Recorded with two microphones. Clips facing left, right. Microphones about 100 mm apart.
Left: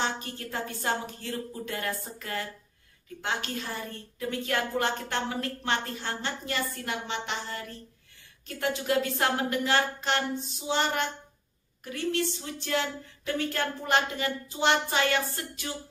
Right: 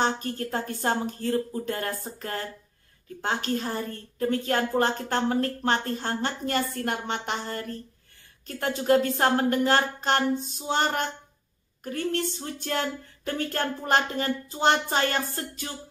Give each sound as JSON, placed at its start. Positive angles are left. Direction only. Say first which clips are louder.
{"t": 0.0, "sound": "a woman's voice", "louder": "right 6 dB", "side_deg": -45}